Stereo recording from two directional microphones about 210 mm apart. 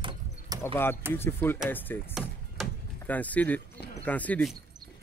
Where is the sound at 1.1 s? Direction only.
10° left (ahead or behind).